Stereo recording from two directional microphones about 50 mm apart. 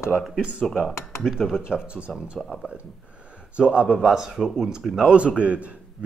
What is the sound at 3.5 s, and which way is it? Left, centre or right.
Speech, right.